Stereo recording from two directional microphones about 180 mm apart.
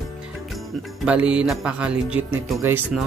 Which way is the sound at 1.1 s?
5° right (ahead or behind).